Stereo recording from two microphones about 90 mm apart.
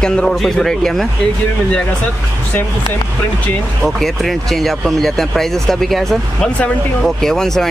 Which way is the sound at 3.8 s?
Centre (ahead or behind).